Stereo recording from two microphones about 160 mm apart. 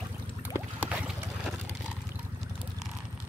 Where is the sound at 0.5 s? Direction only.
10° right (ahead or behind).